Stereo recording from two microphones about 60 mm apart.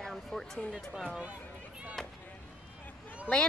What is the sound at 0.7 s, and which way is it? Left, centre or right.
Speech, centre.